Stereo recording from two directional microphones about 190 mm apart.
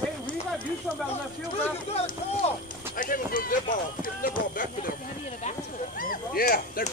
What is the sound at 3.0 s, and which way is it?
Clip-clop, 45° left (ahead or behind).